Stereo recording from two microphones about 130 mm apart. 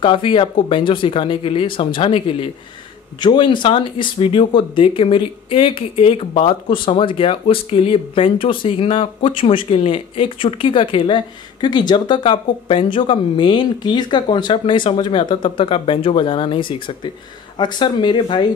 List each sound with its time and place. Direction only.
0.0 s speech: 40° left (ahead or behind)